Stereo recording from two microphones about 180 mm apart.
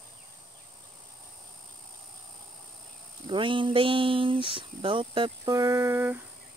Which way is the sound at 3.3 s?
30° right (ahead or behind).